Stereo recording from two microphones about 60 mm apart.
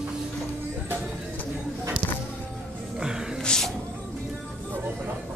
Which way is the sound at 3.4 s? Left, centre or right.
Centre.